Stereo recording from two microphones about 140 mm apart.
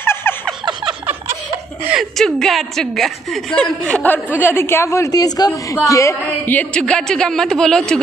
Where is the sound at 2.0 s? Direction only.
Centre (ahead or behind).